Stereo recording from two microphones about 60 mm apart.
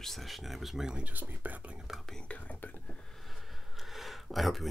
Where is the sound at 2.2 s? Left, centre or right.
Left.